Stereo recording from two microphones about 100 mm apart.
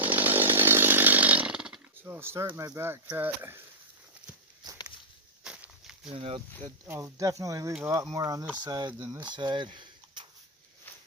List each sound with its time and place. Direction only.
0.0 s chainsaw: 15° right (ahead or behind)
2.0 s speech: 25° right (ahead or behind)
5.4 s a sound: 10° right (ahead or behind)
6.1 s speech: 65° right (ahead or behind)
6.9 s speech: 35° right (ahead or behind)
9.2 s speech: 50° right (ahead or behind)